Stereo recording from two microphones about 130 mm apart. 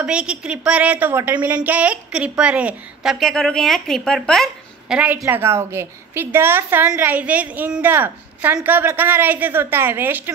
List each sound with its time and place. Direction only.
0.0 s a woman's voice: 10° right (ahead or behind)
4.9 s a woman's voice: 10° right (ahead or behind)